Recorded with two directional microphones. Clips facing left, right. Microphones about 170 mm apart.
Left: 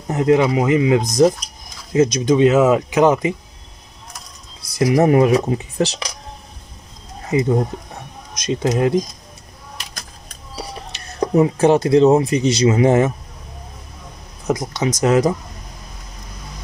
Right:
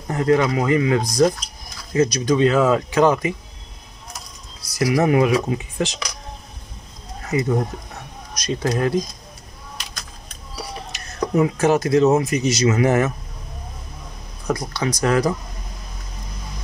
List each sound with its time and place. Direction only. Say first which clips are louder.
0.1 s speech: left 3 dB; 20° left (ahead or behind)
4.7 s speech: left 3 dB; 20° left (ahead or behind)
5.0 s speech: left 3 dB; 35° left (ahead or behind)
7.2 s speech: left 3 dB; 25° left (ahead or behind)
10.5 s speech: left 1 dB; 30° left (ahead or behind)
14.5 s speech: left 3 dB; 20° left (ahead or behind)